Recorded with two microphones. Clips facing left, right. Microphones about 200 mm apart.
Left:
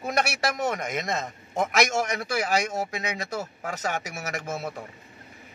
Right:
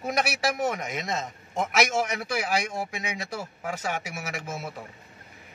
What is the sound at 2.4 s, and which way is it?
Speech, 40° left (ahead or behind).